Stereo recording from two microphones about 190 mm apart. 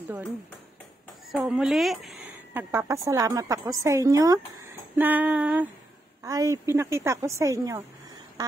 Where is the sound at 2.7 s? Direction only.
15° right (ahead or behind).